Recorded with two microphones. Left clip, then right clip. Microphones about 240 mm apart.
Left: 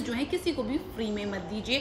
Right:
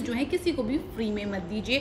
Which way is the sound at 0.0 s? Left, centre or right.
Centre.